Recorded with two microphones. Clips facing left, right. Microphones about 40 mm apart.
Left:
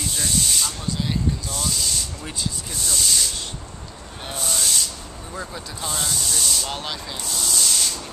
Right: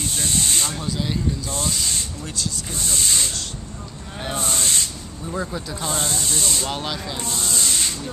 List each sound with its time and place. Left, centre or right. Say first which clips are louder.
0.2 s spray: even; right
1.5 s speech: right 1 dB; right
4.4 s speech: even; right
5.3 s speech: right 6 dB; centre
5.9 s speech: right 1 dB; right
6.7 s speech: right 3 dB; centre
7.2 s rub: right 1 dB; right